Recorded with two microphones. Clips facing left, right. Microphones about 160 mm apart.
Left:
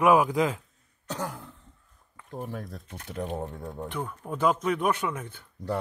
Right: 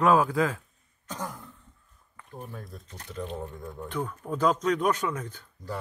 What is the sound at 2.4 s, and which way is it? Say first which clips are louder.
Speech: left 5 dB; 85° left.